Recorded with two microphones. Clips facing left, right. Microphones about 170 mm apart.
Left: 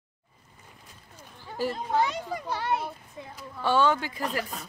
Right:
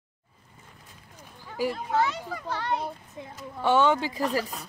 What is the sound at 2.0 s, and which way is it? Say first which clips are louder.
Speech: left 1 dB; 15° left (ahead or behind).